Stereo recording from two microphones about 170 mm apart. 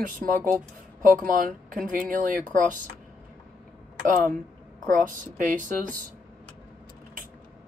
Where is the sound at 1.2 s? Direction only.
55° right (ahead or behind).